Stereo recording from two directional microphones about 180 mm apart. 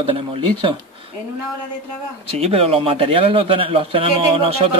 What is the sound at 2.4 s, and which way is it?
Speech, 35° right (ahead or behind).